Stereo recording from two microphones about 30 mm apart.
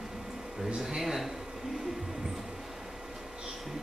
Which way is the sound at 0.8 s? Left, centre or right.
Centre.